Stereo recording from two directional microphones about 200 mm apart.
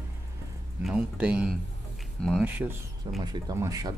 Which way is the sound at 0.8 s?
5° right (ahead or behind).